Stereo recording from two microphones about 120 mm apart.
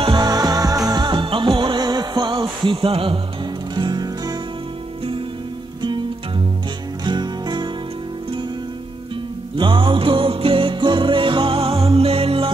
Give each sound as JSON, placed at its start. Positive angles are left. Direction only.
{"t": 0.0, "sound": "music", "side_deg": -35}
{"t": 3.7, "sound": "music", "side_deg": -35}
{"t": 5.8, "sound": "music", "side_deg": -40}
{"t": 9.6, "sound": "music", "side_deg": -45}